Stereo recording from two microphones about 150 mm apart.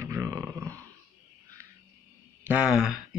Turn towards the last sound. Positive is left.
turn(degrees=-5)  # may be behind; listen again after turning